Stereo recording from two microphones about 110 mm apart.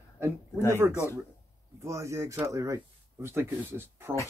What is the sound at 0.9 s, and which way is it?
Speech, 25° left (ahead or behind).